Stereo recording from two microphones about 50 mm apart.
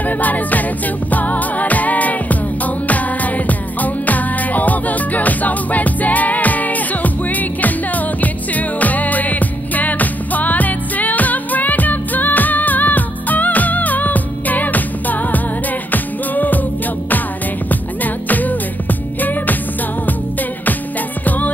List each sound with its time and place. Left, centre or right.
0.0 s music: left
17.6 s music: left
21.2 s music: left